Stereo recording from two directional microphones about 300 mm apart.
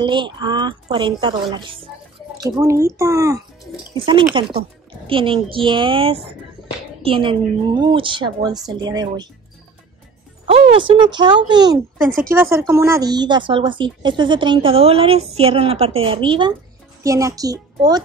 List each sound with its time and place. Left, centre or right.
0.0 s speech: centre
10.4 s a woman's voice: centre